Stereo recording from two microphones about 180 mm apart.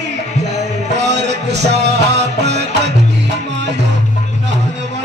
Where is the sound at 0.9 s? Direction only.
75° right (ahead or behind).